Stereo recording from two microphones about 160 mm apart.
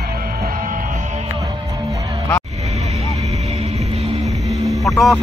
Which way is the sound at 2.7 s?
45° right (ahead or behind).